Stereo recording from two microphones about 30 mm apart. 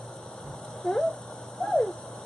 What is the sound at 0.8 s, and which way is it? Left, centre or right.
Speech, centre.